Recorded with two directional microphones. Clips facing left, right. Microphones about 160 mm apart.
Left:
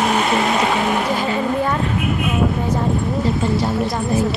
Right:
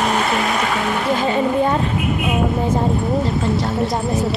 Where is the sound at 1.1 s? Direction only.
20° right (ahead or behind).